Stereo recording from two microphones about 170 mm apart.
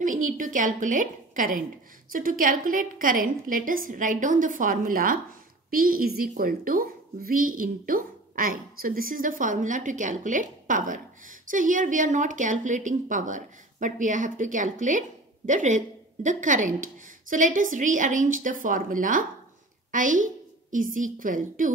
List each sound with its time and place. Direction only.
0.0 s a woman's voice: 50° right (ahead or behind)